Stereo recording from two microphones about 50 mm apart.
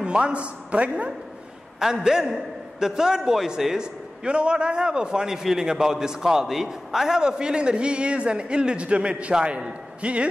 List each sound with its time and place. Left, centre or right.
0.0 s a man's voice: right
1.8 s a man's voice: centre